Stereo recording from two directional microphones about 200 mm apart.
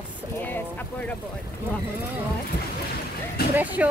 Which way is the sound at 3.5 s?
10° right (ahead or behind).